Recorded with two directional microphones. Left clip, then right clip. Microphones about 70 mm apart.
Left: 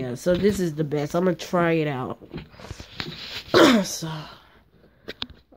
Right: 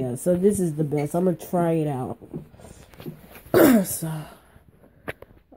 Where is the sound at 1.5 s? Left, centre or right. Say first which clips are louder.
Left 2 dB; left.